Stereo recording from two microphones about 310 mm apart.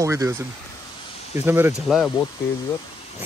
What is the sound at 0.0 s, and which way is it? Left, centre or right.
Speech, centre.